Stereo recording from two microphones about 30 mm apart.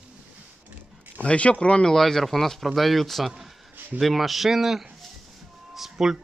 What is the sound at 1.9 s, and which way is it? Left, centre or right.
Speech, centre.